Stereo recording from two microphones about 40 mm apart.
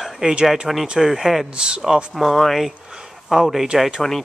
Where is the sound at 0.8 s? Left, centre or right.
Centre.